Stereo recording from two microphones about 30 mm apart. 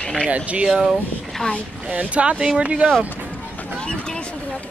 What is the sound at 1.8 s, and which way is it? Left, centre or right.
Speech, right.